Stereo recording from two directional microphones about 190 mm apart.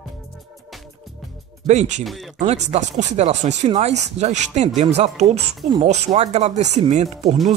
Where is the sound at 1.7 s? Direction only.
40° right (ahead or behind).